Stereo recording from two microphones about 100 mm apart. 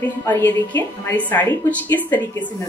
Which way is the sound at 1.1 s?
15° left (ahead or behind).